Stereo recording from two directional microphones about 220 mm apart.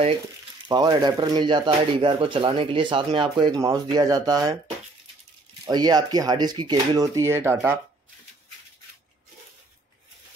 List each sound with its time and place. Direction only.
0.7 s speech: 20° right (ahead or behind)
5.7 s speech: 20° right (ahead or behind)